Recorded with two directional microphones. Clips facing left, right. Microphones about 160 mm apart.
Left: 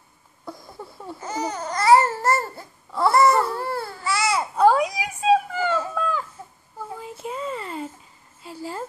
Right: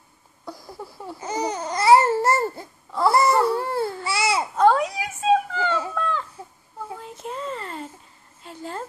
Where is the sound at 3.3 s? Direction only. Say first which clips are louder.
Right 3 dB; 20° right (ahead or behind).